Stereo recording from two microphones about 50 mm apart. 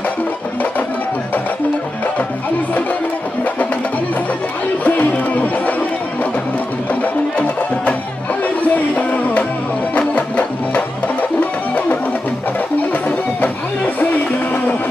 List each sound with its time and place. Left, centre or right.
4.8 s music: left
6.9 s music: left
13.4 s a sound: left